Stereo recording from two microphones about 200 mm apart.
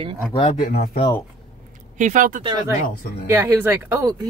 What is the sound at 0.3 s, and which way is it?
Speech, 35° left (ahead or behind).